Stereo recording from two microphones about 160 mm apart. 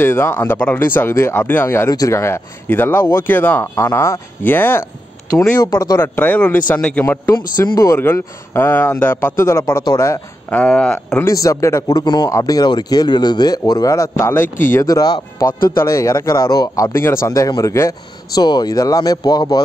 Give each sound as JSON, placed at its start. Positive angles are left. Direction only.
{"t": 0.0, "sound": "speech", "side_deg": 15}
{"t": 7.6, "sound": "speech", "side_deg": 20}
{"t": 10.6, "sound": "speech", "side_deg": 5}
{"t": 11.4, "sound": "speech", "side_deg": 20}